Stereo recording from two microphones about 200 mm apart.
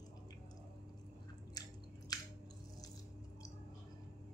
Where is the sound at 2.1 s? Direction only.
20° left (ahead or behind).